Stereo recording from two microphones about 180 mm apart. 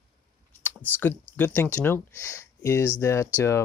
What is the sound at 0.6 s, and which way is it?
Speech, 10° left (ahead or behind).